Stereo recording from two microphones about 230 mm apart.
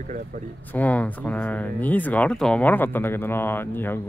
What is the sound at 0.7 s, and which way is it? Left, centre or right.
Speech, centre.